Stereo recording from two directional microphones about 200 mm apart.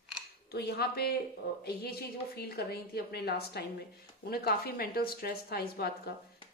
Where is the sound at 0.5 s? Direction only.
55° left (ahead or behind).